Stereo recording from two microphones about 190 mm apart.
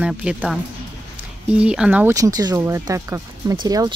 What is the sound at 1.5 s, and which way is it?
Speech, 5° right (ahead or behind).